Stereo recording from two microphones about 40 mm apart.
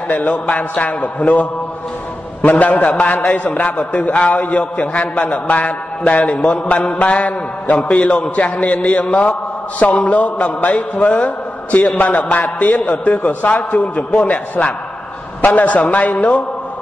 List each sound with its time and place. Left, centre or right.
0.1 s mantra: left